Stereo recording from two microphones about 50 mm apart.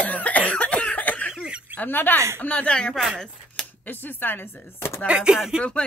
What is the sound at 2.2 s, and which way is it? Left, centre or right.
Speech, right.